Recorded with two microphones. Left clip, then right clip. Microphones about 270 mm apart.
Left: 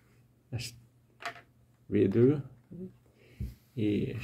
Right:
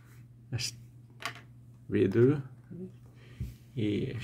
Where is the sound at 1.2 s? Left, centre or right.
Right.